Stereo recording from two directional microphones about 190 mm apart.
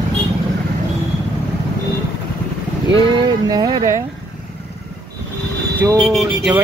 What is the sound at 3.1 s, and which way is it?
Speech, 25° right (ahead or behind).